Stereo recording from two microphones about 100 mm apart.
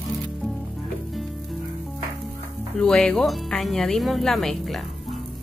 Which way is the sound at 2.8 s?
10° left (ahead or behind).